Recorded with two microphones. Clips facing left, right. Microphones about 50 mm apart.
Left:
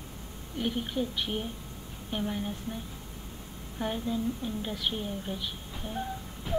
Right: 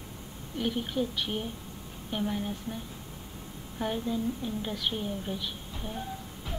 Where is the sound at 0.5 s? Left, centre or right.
Centre.